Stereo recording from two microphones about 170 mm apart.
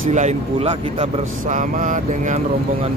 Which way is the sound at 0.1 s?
45° right (ahead or behind).